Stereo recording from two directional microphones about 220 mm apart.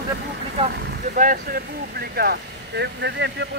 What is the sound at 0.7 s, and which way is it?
Speech, 40° right (ahead or behind).